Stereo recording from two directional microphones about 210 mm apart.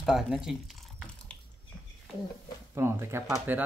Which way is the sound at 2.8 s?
10° right (ahead or behind).